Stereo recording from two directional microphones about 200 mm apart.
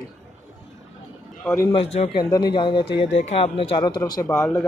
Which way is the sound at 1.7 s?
30° left (ahead or behind).